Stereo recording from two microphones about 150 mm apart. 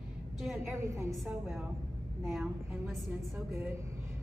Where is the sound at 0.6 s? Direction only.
15° right (ahead or behind).